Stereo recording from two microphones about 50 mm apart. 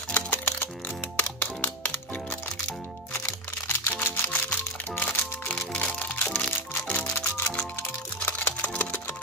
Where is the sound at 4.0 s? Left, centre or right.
Left.